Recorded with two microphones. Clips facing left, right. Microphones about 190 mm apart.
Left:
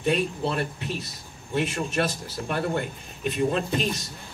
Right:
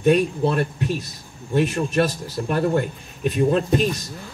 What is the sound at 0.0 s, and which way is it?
Speech, 45° right (ahead or behind).